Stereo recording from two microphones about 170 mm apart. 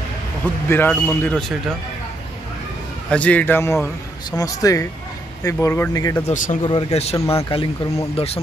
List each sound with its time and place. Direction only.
0.7 s a man's voice: 15° left (ahead or behind)
3.1 s a man's voice: 10° left (ahead or behind)
6.2 s speech: 50° left (ahead or behind)
6.6 s speech: 30° left (ahead or behind)
7.2 s a man's voice: 15° left (ahead or behind)
7.4 s speech: 30° left (ahead or behind)